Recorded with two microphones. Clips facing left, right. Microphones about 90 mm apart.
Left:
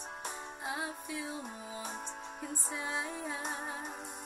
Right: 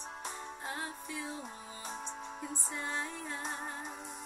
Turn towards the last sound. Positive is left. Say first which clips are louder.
# left 1 dB
turn(degrees=5)  # may be behind; listen again after turning